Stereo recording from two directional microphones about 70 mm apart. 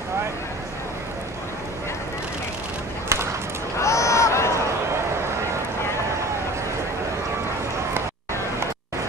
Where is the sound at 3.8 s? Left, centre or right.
Left.